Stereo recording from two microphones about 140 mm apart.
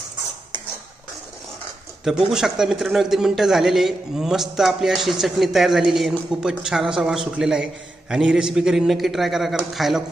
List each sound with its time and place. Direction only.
2.3 s a man's voice: 5° right (ahead or behind)